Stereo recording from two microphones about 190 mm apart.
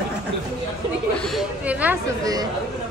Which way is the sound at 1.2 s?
Centre (ahead or behind).